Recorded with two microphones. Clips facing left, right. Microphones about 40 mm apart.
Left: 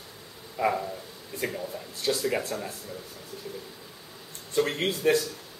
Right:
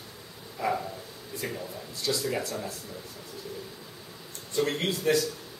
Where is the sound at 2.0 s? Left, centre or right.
Left.